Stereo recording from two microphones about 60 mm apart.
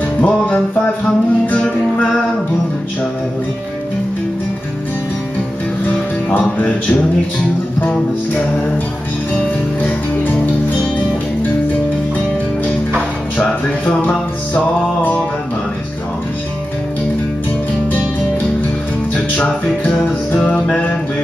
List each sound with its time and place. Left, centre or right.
0.2 s music: centre
6.4 s music: centre
9.8 s music: left
13.4 s music: left
19.3 s music: left